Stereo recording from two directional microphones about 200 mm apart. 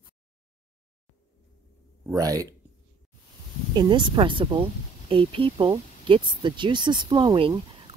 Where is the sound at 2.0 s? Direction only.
15° right (ahead or behind).